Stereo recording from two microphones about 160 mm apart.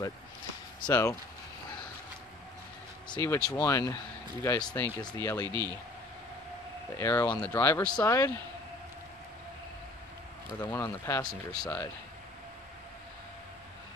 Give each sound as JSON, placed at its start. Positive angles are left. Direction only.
{"t": 0.8, "sound": "speech", "side_deg": 20}
{"t": 3.2, "sound": "speech", "side_deg": 20}
{"t": 7.0, "sound": "speech", "side_deg": 15}
{"t": 7.8, "sound": "speech", "side_deg": 25}
{"t": 10.6, "sound": "speech", "side_deg": 15}